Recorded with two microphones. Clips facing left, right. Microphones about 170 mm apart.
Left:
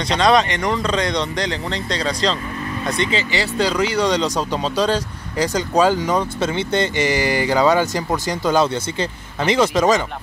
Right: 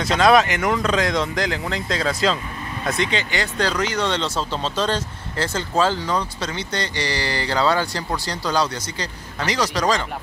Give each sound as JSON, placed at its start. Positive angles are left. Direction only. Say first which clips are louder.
{"t": 0.0, "sound": "speech", "louder": "even", "side_deg": -5}